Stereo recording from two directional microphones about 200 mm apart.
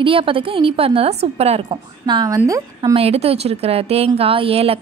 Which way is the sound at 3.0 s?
30° right (ahead or behind).